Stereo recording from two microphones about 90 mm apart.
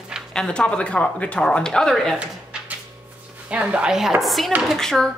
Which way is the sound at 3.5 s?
10° right (ahead or behind).